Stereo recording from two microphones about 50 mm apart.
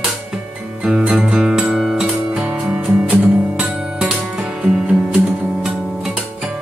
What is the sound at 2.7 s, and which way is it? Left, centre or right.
Music, right.